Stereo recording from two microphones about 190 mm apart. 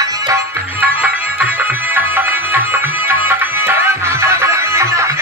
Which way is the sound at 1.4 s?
10° right (ahead or behind).